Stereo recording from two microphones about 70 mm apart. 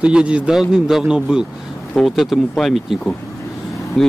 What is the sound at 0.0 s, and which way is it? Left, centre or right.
A man's voice, centre.